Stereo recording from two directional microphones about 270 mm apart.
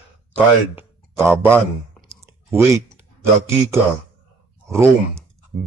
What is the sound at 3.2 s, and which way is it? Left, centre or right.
Speech, centre.